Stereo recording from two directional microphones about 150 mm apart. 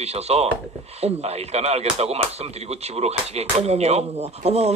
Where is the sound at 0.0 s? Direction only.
45° right (ahead or behind).